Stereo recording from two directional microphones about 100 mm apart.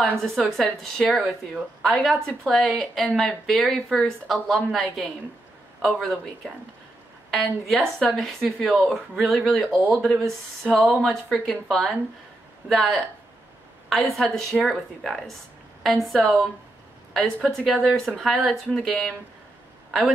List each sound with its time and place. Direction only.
0.0 s speech: 5° left (ahead or behind)
14.1 s speech: 5° left (ahead or behind)